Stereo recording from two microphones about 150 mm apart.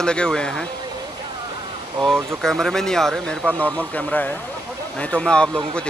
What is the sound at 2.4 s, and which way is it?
Speech, centre (ahead or behind).